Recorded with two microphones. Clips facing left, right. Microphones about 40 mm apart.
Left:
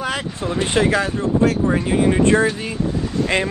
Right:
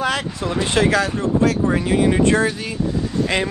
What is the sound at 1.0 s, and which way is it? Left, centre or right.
Speech, left.